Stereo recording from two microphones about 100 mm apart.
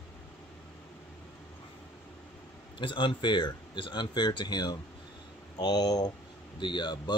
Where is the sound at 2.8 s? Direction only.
55° left (ahead or behind).